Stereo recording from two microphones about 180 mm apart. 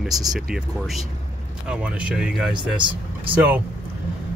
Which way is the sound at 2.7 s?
25° right (ahead or behind).